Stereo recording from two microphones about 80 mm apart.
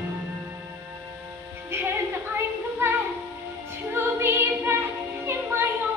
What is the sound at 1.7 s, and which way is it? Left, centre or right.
Music, right.